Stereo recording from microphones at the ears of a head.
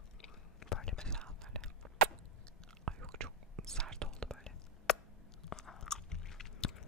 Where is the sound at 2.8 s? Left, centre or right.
Right.